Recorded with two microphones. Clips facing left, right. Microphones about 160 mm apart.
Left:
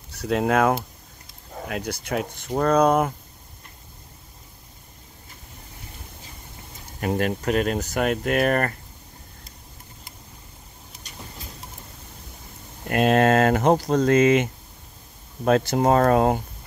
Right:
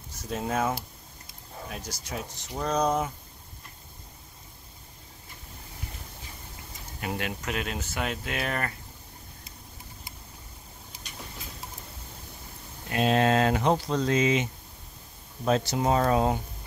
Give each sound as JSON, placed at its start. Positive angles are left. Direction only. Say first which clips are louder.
{"t": 0.1, "sound": "speech", "louder": "left 9 dB", "side_deg": 70}
{"t": 1.7, "sound": "speech", "louder": "left 10 dB", "side_deg": 60}
{"t": 7.1, "sound": "speech", "louder": "left 9 dB", "side_deg": 40}
{"t": 12.8, "sound": "speech", "louder": "left 5 dB", "side_deg": 55}